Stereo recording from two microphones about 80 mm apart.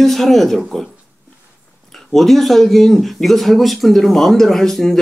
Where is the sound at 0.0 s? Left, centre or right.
Centre.